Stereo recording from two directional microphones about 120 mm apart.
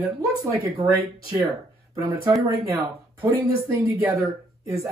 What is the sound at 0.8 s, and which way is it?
Speech, 25° right (ahead or behind).